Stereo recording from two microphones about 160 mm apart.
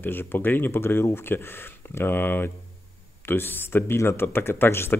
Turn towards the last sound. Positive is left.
turn(degrees=15)  # may be behind; listen again after turning